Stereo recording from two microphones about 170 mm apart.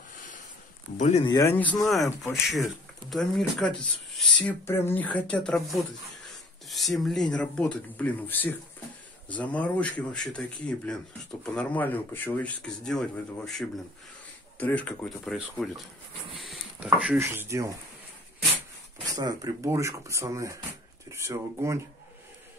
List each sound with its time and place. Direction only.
0.9 s speech: 45° left (ahead or behind)
1.2 s speech: 20° left (ahead or behind)
2.4 s speech: centre (ahead or behind); by 17.7 s 15° right (ahead or behind)
19.1 s speech: 25° right (ahead or behind)